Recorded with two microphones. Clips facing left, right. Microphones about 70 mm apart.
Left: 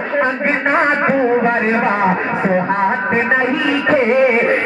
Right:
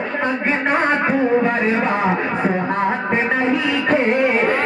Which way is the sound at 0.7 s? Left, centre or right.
Left.